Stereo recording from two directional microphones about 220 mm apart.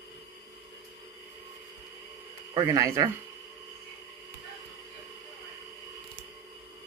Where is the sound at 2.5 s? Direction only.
15° right (ahead or behind).